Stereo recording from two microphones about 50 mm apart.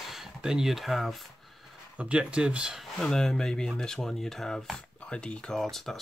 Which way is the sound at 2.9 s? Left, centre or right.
Centre.